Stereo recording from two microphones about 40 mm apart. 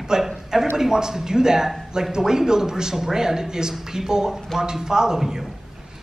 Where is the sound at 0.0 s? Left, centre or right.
Centre.